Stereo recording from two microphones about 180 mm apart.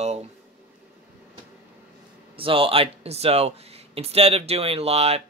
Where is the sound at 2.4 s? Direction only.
30° right (ahead or behind).